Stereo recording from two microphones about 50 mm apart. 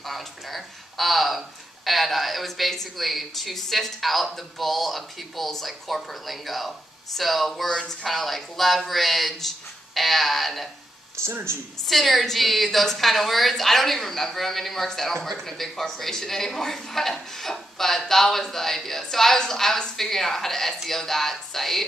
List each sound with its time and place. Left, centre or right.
0.0 s speech: centre
11.1 s speech: right
11.9 s a woman's voice: centre